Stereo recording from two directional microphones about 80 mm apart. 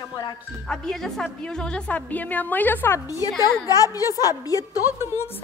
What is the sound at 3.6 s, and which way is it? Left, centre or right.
A woman's voice, left.